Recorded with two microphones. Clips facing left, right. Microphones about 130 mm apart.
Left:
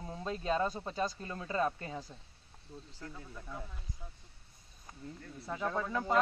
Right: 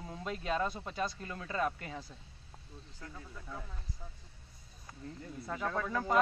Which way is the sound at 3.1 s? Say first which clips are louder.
Right 1 dB; 10° left (ahead or behind).